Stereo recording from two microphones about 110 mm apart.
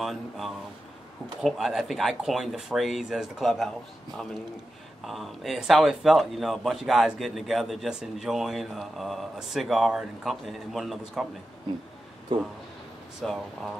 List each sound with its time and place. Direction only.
0.0 s a man's voice: centre (ahead or behind)
5.0 s a man's voice: centre (ahead or behind)
12.3 s speech: 45° right (ahead or behind)
13.2 s a man's voice: 5° left (ahead or behind)